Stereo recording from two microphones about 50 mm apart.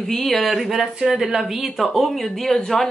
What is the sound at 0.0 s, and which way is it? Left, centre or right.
A woman's voice, centre.